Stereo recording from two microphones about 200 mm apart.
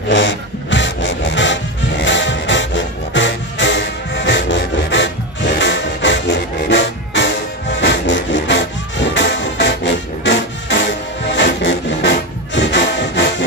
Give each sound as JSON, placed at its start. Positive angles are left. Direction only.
{"t": 0.1, "sound": "music", "side_deg": 65}